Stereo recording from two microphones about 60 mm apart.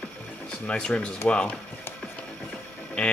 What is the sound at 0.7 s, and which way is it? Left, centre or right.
Speech, centre.